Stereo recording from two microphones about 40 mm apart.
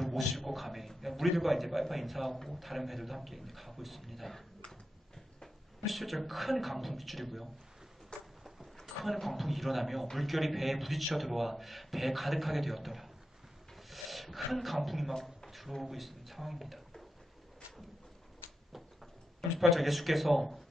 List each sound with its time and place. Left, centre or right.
0.0 s a man's voice: centre
4.6 s a sound: centre
5.9 s a man's voice: centre
8.1 s a sound: left
9.0 s a man's voice: centre
19.7 s a man's voice: centre